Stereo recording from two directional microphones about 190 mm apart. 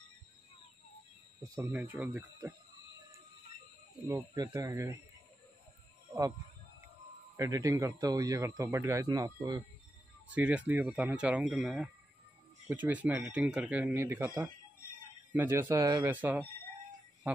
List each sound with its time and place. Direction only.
1.4 s speech: 15° right (ahead or behind)
1.8 s speech: 5° right (ahead or behind)
4.3 s speech: 20° right (ahead or behind)
7.3 s speech: 15° right (ahead or behind)
10.2 s speech: 10° right (ahead or behind)
16.1 s speech: 10° right (ahead or behind)